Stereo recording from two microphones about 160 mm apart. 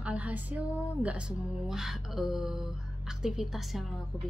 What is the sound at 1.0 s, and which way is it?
A woman's voice, 5° right (ahead or behind).